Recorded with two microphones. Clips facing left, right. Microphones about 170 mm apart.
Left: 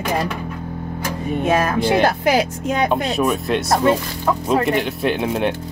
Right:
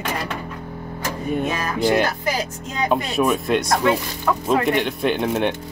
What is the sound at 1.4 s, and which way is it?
Speech, 55° left (ahead or behind).